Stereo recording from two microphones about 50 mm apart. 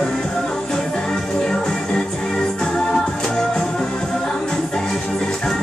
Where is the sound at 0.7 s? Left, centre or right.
Centre.